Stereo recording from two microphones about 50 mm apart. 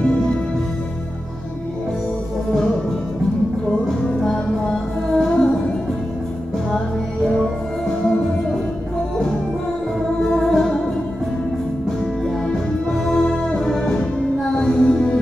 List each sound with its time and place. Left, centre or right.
4.2 s music: centre
5.3 s music: centre
10.3 s music: centre
12.4 s music: centre